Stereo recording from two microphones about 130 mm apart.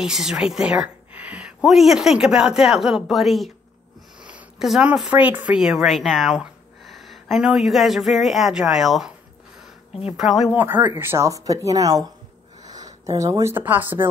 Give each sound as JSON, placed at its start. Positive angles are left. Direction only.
{"t": 0.0, "sound": "a woman's voice", "side_deg": -5}
{"t": 10.1, "sound": "a woman's voice", "side_deg": -5}
{"t": 10.5, "sound": "speech", "side_deg": -15}